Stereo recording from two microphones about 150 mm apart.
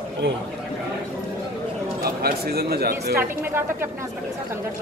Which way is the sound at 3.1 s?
15° right (ahead or behind).